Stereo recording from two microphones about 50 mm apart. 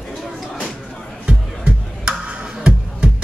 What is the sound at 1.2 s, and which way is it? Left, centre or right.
Music, centre.